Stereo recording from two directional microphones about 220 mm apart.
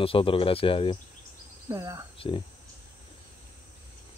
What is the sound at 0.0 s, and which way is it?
Speech, 25° left (ahead or behind).